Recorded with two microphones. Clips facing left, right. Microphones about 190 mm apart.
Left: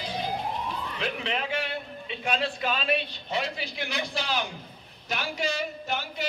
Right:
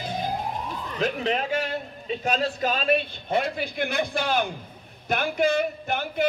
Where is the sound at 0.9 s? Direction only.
40° right (ahead or behind).